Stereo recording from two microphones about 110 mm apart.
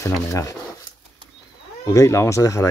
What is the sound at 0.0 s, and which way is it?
Speech, 30° left (ahead or behind).